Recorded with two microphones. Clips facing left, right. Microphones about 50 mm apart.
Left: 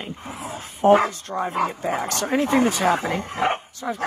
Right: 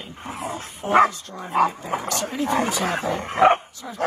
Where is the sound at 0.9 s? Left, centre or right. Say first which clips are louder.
Left 1 dB; right.